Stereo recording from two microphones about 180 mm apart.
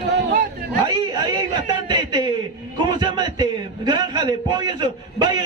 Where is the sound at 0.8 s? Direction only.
25° right (ahead or behind).